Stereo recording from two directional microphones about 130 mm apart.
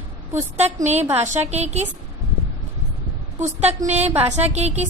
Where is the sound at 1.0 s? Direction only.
20° right (ahead or behind).